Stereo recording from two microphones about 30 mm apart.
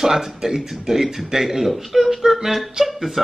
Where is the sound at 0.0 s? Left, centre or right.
Centre.